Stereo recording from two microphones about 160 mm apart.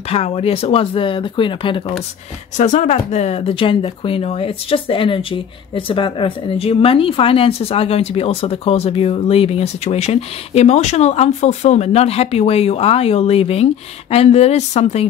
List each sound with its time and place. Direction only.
0.1 s speech: 40° left (ahead or behind)
2.5 s speech: 50° left (ahead or behind)